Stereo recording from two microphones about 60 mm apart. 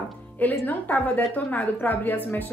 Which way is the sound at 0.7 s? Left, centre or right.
Left.